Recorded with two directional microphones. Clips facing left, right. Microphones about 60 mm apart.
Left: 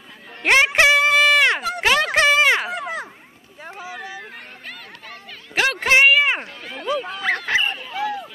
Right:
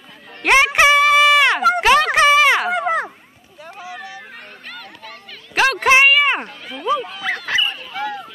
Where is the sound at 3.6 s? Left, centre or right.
Left.